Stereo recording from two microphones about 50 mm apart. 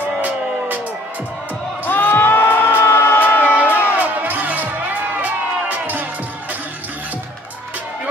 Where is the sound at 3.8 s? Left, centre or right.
Right.